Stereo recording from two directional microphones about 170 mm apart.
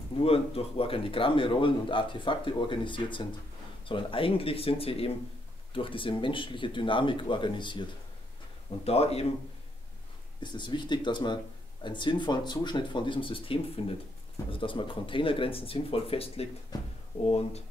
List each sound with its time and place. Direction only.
0.2 s a man's voice: 35° left (ahead or behind)
8.8 s speech: 35° left (ahead or behind)
10.4 s a man's voice: 25° left (ahead or behind)
16.7 s a man's voice: 25° left (ahead or behind)
17.2 s speech: 40° left (ahead or behind)